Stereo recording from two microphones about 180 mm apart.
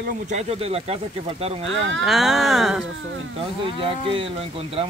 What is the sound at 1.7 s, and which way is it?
Speech, 90° right.